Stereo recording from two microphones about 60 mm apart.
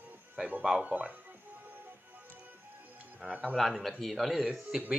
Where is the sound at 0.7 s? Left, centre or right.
Centre.